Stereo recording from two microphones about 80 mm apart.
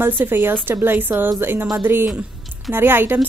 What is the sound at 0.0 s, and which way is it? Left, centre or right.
A woman's voice, right.